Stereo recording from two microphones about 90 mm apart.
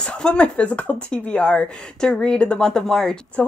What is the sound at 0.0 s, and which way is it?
A woman's voice, 10° left (ahead or behind).